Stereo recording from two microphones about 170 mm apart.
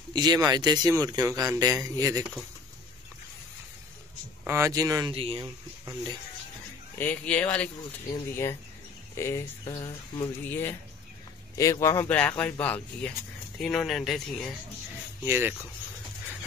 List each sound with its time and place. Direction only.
0.1 s speech: 25° right (ahead or behind)
4.5 s speech: 15° right (ahead or behind)
5.1 s speech: 35° right (ahead or behind)
5.4 s speech: 25° right (ahead or behind)
7.0 s speech: 10° left (ahead or behind); by 10.3 s 25° left (ahead or behind)
10.5 s speech: 15° left (ahead or behind)
15.2 s speech: 10° right (ahead or behind)